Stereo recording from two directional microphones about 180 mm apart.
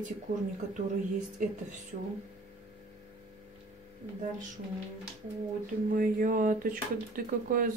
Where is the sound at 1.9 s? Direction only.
50° right (ahead or behind).